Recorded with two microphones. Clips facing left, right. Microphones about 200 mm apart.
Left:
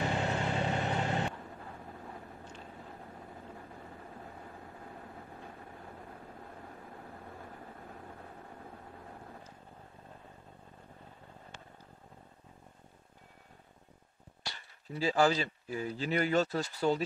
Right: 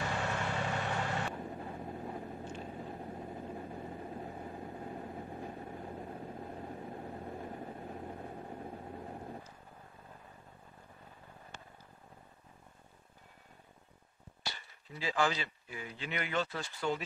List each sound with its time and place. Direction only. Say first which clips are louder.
0.4 s vehicle: left 3 dB; 30° left (ahead or behind)
1.4 s vehicle: right 5 dB; 25° right (ahead or behind)
14.9 s speech: left 5 dB; 35° left (ahead or behind)